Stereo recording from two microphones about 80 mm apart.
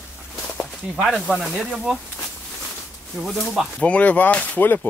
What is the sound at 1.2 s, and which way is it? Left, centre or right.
Speech, centre.